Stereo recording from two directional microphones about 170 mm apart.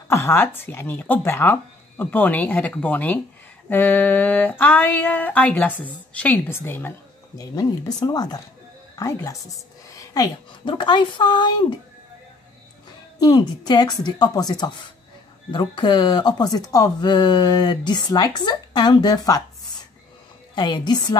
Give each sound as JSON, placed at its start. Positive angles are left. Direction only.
{"t": 0.1, "sound": "speech", "side_deg": 15}
{"t": 13.2, "sound": "speech", "side_deg": 25}
{"t": 20.5, "sound": "speech", "side_deg": 25}